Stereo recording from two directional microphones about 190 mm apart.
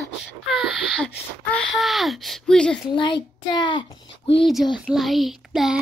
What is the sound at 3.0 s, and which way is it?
A child's voice, 25° left (ahead or behind).